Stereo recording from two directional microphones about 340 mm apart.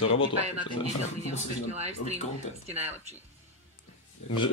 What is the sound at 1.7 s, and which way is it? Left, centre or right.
Speech, centre.